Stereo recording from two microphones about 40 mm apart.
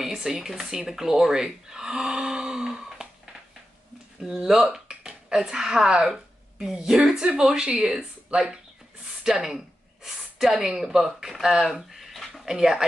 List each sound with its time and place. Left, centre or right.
0.0 s speech: centre
4.2 s speech: centre
7.4 s a woman's voice: right
11.6 s a sound: centre
12.4 s speech: centre